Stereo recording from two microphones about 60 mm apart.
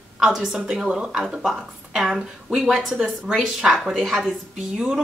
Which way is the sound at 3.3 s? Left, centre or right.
Centre.